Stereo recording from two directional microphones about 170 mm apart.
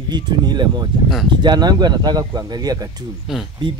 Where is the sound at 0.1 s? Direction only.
25° right (ahead or behind).